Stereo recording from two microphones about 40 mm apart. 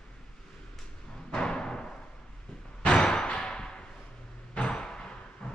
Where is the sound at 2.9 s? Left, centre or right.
Centre.